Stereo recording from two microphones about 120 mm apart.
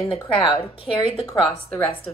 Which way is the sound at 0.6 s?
50° left (ahead or behind).